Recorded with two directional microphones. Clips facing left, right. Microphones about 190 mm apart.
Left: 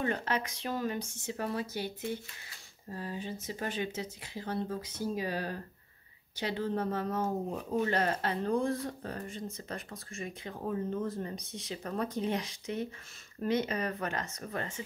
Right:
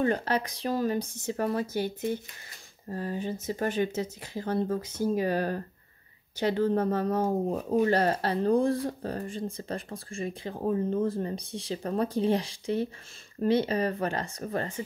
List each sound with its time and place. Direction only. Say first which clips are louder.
0.0 s speech: right 6 dB; 35° right (ahead or behind)